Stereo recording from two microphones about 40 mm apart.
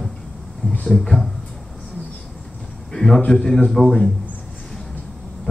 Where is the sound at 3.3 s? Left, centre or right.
Centre.